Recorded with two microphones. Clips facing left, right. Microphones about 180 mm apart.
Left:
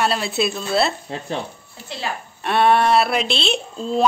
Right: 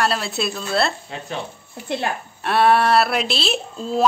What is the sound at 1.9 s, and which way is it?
Speech, 55° right (ahead or behind).